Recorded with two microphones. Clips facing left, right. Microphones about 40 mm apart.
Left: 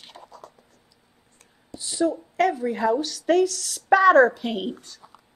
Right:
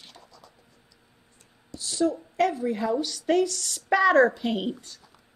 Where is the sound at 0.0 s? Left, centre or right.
Left.